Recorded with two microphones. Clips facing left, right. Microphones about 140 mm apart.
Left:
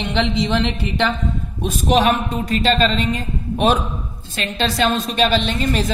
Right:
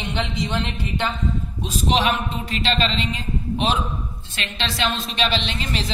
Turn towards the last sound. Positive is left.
turn(degrees=45)  # may be behind; listen again after turning